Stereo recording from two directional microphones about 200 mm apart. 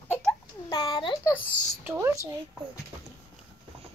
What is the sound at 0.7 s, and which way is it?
Speech, 20° left (ahead or behind).